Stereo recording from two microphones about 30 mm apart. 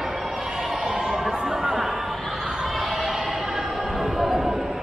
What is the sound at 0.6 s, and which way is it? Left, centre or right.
Neigh, centre.